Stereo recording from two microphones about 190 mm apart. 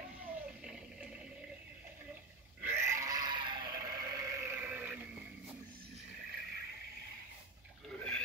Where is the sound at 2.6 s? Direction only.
15° right (ahead or behind).